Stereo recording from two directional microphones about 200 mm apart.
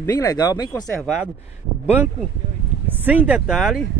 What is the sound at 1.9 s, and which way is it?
Speech, 10° right (ahead or behind).